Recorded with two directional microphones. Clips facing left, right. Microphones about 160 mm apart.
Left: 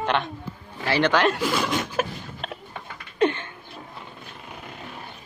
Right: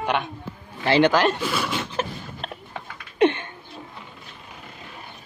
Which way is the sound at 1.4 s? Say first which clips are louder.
Left 2 dB; 15° left (ahead or behind).